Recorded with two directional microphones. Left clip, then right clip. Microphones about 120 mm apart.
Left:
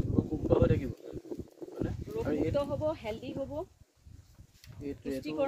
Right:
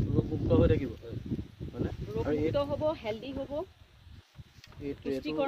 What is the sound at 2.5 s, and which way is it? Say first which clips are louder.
Speech: right 2 dB; 5° left (ahead or behind).